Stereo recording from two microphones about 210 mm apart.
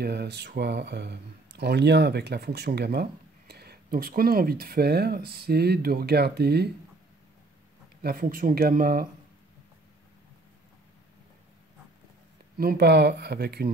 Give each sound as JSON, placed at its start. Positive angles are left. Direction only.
{"t": 0.0, "sound": "speech", "side_deg": -50}
{"t": 8.0, "sound": "speech", "side_deg": -45}
{"t": 12.5, "sound": "speech", "side_deg": -45}